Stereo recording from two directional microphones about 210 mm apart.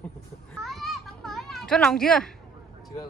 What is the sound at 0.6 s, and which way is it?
Children playing, centre (ahead or behind).